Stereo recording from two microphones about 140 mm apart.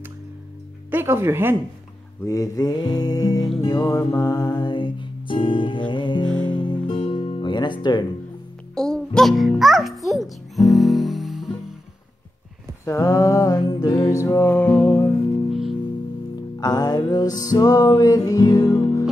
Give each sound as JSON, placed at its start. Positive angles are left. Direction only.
{"t": 0.8, "sound": "speech", "side_deg": -15}
{"t": 2.2, "sound": "music", "side_deg": 25}
{"t": 8.7, "sound": "music", "side_deg": 5}
{"t": 12.8, "sound": "music", "side_deg": 20}
{"t": 16.5, "sound": "music", "side_deg": 30}